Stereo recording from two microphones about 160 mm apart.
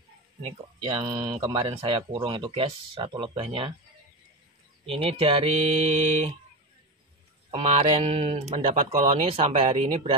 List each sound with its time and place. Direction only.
0.4 s speech: 35° right (ahead or behind)
4.8 s speech: 35° right (ahead or behind)
7.5 s speech: 40° right (ahead or behind)